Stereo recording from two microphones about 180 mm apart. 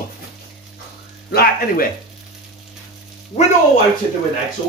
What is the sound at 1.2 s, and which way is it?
Speech, 60° left (ahead or behind).